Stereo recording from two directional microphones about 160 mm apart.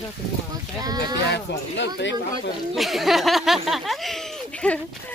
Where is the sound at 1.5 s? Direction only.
90° left.